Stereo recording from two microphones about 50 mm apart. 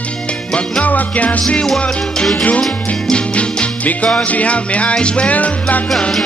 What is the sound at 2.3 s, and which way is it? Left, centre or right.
Music, left.